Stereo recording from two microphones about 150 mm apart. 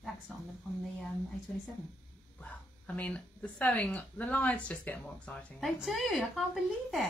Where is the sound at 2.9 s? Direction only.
10° left (ahead or behind).